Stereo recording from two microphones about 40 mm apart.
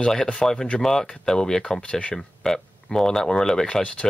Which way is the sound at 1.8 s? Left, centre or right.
Left.